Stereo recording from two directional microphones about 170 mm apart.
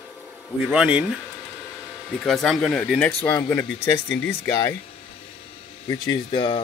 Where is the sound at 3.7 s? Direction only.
90° left.